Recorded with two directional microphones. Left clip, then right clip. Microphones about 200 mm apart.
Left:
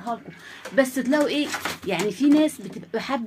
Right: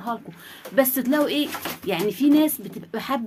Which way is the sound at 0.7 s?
Centre (ahead or behind).